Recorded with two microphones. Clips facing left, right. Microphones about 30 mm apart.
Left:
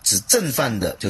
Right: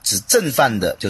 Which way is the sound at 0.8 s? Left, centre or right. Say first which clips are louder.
Right 4 dB; right.